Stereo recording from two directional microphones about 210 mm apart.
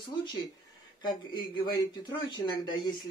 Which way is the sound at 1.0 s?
20° left (ahead or behind).